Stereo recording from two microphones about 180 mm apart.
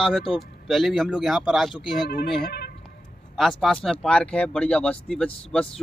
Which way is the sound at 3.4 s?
Centre (ahead or behind).